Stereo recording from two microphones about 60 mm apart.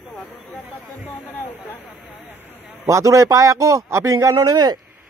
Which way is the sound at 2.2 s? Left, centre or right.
Right.